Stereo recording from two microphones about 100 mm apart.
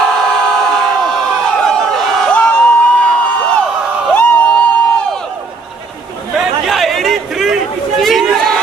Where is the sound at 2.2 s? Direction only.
10° left (ahead or behind).